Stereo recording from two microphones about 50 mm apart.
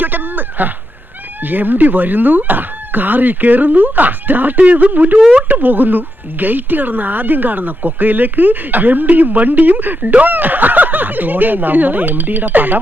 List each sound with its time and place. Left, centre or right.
0.0 s speech: right